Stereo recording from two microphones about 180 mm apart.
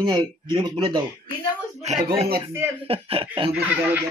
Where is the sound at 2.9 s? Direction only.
30° right (ahead or behind).